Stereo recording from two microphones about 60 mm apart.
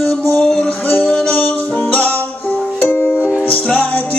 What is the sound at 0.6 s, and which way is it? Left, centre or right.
Music, left.